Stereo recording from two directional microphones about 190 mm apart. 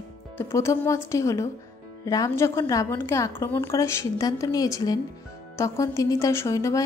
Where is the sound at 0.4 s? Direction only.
15° left (ahead or behind).